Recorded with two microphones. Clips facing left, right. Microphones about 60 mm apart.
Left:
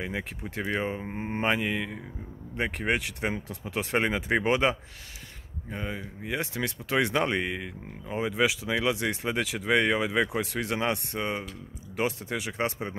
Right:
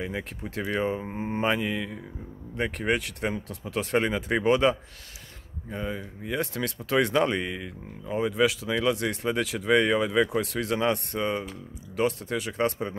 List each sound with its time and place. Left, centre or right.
0.2 s speech: centre
2.5 s speech: centre
7.3 s speech: left
8.2 s speech: centre